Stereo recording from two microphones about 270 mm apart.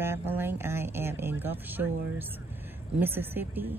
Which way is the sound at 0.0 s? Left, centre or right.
Centre.